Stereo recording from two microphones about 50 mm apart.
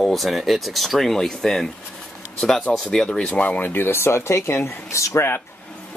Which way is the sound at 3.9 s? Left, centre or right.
Left.